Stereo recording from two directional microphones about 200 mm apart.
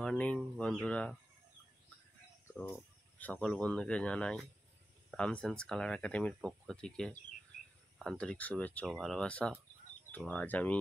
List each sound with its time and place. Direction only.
0.0 s speech: 5° left (ahead or behind)
2.5 s speech: 10° left (ahead or behind)